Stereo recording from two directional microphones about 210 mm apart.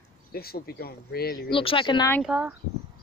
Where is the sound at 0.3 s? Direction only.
45° left (ahead or behind).